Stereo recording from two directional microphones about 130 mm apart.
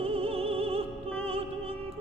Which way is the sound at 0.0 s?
50° right (ahead or behind).